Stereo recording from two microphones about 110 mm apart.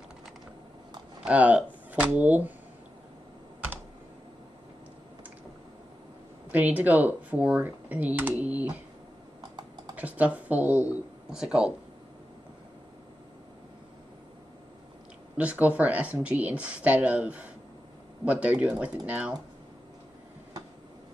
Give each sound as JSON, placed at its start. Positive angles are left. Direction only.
{"t": 1.2, "sound": "speech", "side_deg": -15}
{"t": 6.5, "sound": "speech", "side_deg": -15}
{"t": 9.4, "sound": "typing", "side_deg": -35}
{"t": 9.9, "sound": "speech", "side_deg": -15}
{"t": 15.3, "sound": "speech", "side_deg": -10}